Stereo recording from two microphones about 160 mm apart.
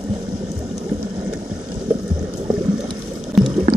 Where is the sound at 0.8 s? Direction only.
10° right (ahead or behind).